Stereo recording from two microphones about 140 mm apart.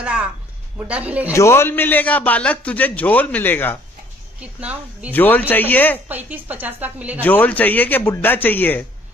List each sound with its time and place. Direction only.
0.0 s a sound: 5° right (ahead or behind)
0.7 s speech: 10° right (ahead or behind)
1.3 s a man's voice: 20° left (ahead or behind)
4.4 s speech: 10° right (ahead or behind)
5.1 s a man's voice: 15° left (ahead or behind)
6.0 s speech: 10° right (ahead or behind)
7.2 s a man's voice: 10° left (ahead or behind)